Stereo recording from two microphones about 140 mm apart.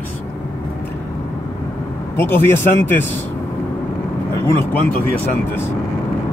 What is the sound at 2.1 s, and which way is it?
Speech, 15° left (ahead or behind).